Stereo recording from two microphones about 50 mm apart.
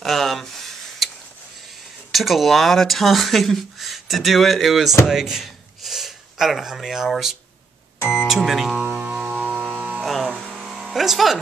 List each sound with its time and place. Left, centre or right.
0.0 s a sound: centre
2.1 s speech: centre
8.0 s speech: left
8.3 s speech: centre
9.3 s music: right
10.0 s music: centre
10.6 s a sound: centre